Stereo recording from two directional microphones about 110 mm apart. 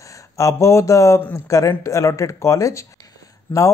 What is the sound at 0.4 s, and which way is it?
Speech, 25° left (ahead or behind).